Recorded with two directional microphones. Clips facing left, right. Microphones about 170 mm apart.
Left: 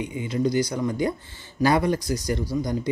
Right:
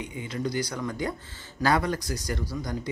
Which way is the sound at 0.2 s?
15° left (ahead or behind).